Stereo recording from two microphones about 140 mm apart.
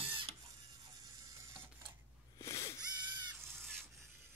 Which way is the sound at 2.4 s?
20° left (ahead or behind).